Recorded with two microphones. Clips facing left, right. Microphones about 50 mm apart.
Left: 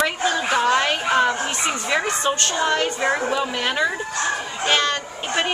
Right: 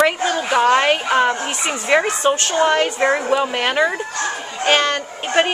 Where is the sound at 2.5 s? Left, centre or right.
Right.